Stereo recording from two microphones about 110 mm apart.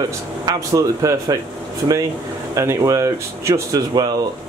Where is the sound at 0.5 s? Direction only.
30° right (ahead or behind).